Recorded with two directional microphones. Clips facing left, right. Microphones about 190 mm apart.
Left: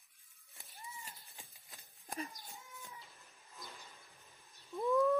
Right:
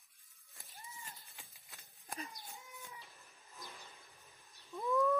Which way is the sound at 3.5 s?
Centre (ahead or behind).